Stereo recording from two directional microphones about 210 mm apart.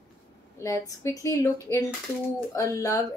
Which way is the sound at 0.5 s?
15° left (ahead or behind).